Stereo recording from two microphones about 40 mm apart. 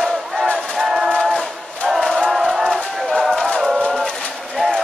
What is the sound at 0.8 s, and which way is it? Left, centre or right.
Train, centre.